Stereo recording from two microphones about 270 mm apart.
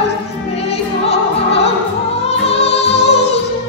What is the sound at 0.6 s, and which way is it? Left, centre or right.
Music, left.